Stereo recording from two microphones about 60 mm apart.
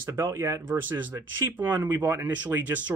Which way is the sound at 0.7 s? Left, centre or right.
Right.